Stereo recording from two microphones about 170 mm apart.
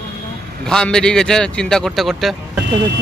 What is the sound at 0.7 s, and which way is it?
Speech, 5° left (ahead or behind).